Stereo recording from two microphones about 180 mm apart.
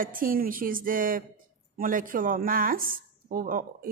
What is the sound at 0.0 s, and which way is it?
Speech, 50° right (ahead or behind).